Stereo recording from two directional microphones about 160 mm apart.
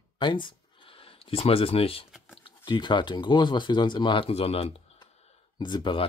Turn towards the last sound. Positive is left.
turn(degrees=30)  # may be behind; listen again after turning